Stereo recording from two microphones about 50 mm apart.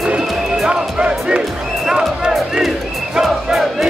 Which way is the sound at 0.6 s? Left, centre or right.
Centre.